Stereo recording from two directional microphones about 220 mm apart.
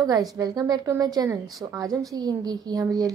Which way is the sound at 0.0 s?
15° right (ahead or behind).